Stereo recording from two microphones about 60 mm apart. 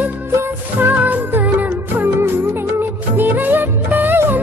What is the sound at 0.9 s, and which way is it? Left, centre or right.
Music, right.